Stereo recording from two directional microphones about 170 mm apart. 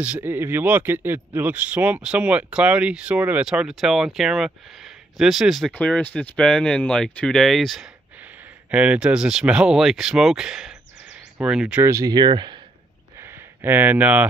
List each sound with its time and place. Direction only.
0.0 s speech: 10° right (ahead or behind)
11.8 s speech: 20° right (ahead or behind)
13.2 s a sound: 15° right (ahead or behind)